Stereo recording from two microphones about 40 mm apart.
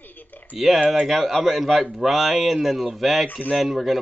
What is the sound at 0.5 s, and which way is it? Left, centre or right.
Speech, centre.